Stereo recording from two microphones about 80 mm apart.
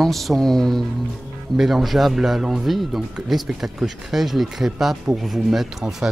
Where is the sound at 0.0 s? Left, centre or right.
Centre.